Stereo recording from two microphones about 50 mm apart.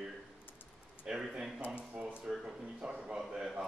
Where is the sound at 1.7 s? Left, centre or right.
Right.